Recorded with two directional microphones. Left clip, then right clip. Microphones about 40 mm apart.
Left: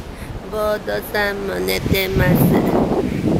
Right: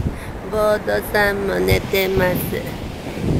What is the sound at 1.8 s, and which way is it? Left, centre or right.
Speech, right.